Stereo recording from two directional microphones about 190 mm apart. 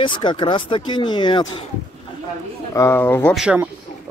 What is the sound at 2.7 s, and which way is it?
Speech, 15° left (ahead or behind).